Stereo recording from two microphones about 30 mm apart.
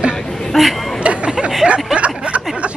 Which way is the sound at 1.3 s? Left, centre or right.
Right.